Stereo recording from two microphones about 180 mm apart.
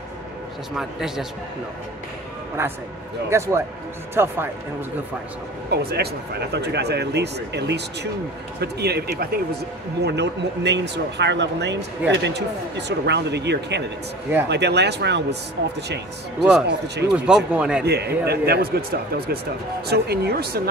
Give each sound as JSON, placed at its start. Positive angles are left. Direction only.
{"t": 0.7, "sound": "speech", "side_deg": -5}
{"t": 2.6, "sound": "speech", "side_deg": -15}
{"t": 5.7, "sound": "speech", "side_deg": -65}
{"t": 17.1, "sound": "speech", "side_deg": -5}
{"t": 17.8, "sound": "speech", "side_deg": -65}